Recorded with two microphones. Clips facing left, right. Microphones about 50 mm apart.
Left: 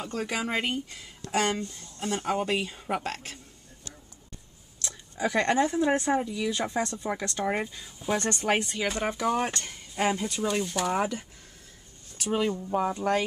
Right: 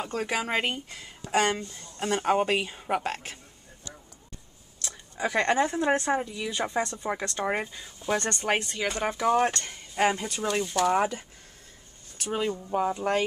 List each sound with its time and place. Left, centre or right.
0.0 s speech: centre
2.0 s speech: right
2.6 s speech: centre
5.2 s speech: centre
8.0 s speech: centre
9.9 s speech: centre
10.2 s speech: centre
12.3 s speech: centre